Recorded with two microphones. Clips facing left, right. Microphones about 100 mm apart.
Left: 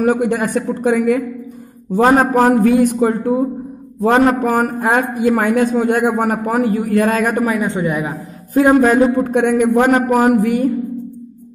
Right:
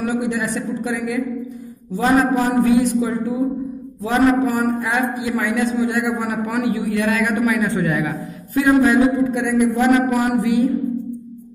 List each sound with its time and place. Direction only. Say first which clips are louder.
0.0 s a man's voice: left 6 dB; 55° left (ahead or behind); by 8.2 s 25° left (ahead or behind)
8.5 s a man's voice: left 3 dB; 45° left (ahead or behind)
9.9 s a man's voice: left 4 dB; 45° left (ahead or behind)